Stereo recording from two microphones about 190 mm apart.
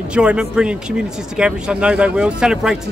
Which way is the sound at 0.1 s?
5° right (ahead or behind).